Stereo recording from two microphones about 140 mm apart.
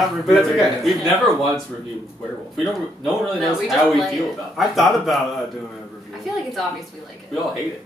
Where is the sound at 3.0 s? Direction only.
Centre (ahead or behind).